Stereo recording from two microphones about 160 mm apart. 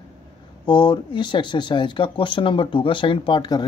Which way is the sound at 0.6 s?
30° left (ahead or behind).